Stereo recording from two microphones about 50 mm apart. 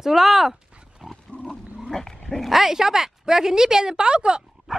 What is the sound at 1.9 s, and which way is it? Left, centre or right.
Speech, centre.